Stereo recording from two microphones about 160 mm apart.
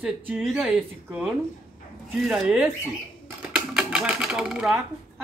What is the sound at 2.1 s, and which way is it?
Speech, centre (ahead or behind).